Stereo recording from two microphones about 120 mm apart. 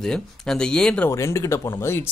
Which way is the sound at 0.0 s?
5° left (ahead or behind).